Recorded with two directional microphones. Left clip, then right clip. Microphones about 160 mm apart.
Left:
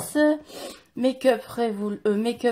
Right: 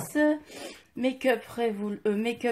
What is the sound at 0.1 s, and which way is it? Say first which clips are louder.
Speech: left 4 dB; 15° left (ahead or behind).